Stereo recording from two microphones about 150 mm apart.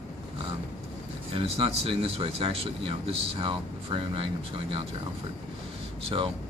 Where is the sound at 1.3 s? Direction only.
40° right (ahead or behind).